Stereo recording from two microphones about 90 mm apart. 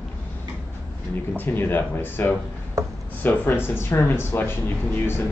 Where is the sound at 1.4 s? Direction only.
25° left (ahead or behind).